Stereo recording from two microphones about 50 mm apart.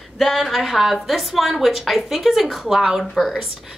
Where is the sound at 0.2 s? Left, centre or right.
Centre.